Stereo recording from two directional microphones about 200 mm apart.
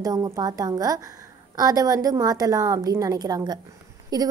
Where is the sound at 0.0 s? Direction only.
20° right (ahead or behind).